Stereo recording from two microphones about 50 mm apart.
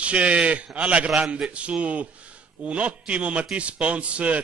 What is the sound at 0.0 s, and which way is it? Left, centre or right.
A man's voice, right.